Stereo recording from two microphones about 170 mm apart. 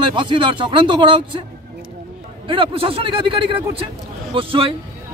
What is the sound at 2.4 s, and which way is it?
A man's voice, 30° right (ahead or behind).